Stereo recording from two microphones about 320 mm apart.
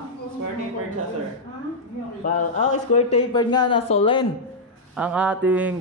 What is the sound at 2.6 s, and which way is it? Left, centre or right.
Speech, left.